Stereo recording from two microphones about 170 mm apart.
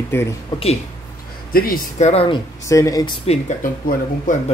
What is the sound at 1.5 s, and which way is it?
Speech, 60° left (ahead or behind).